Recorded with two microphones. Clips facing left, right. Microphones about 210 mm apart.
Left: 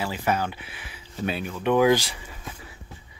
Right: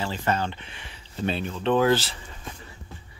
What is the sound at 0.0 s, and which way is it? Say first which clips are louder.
Speech: left 1 dB; 10° left (ahead or behind).